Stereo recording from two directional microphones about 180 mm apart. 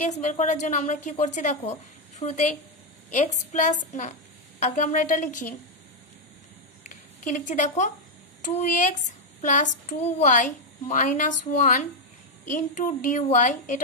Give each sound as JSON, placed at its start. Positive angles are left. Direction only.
{"t": 0.1, "sound": "a woman's voice", "side_deg": 40}
{"t": 6.8, "sound": "a sound", "side_deg": 45}
{"t": 8.4, "sound": "a woman's voice", "side_deg": 45}